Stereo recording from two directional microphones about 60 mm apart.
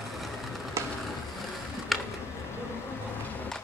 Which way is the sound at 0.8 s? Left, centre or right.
Right.